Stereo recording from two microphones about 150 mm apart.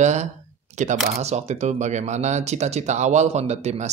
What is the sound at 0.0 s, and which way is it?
Speech, 50° right (ahead or behind).